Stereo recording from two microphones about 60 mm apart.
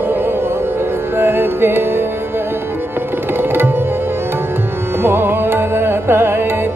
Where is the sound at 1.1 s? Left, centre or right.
Right.